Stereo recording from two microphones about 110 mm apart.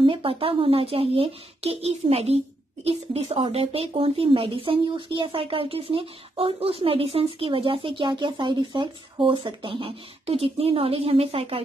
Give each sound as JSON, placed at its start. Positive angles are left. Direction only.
{"t": 0.0, "sound": "speech", "side_deg": -55}